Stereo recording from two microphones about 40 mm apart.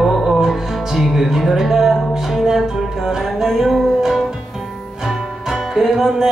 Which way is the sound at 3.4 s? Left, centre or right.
Centre.